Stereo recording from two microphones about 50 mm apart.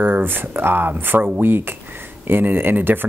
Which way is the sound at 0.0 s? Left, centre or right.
Right.